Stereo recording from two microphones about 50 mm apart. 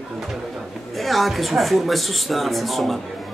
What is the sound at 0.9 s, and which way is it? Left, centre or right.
Speech, centre.